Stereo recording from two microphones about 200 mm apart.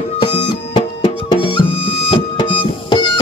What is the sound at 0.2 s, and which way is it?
Music, 25° left (ahead or behind).